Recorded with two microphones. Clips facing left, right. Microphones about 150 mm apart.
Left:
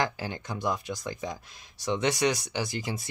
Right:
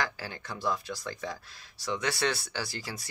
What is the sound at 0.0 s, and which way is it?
Speech, 20° left (ahead or behind).